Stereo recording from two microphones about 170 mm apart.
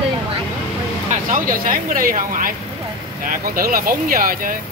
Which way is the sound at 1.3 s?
50° right (ahead or behind).